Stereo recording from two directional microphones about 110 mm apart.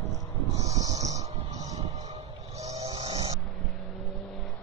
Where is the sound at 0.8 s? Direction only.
90° right.